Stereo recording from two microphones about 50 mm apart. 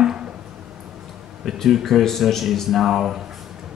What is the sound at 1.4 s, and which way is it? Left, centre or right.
Speech, centre.